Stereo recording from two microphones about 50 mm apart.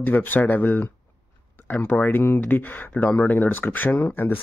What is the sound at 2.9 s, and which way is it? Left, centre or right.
Speech, left.